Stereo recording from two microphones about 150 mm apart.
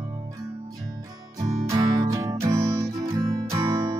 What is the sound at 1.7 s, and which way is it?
Music, 25° right (ahead or behind).